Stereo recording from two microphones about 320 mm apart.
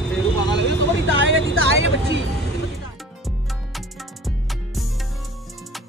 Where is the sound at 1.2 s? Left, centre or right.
Right.